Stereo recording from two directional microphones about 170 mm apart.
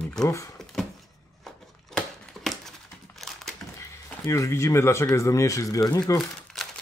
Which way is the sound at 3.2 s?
Centre (ahead or behind).